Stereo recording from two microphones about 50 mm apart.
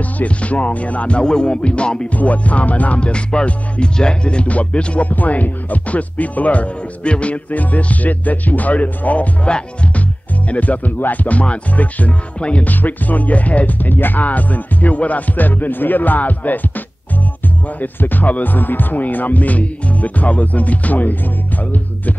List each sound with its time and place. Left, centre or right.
0.0 s music: left
12.6 s speech: left